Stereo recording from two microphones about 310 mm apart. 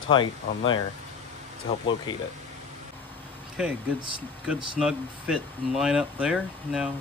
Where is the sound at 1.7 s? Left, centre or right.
Centre.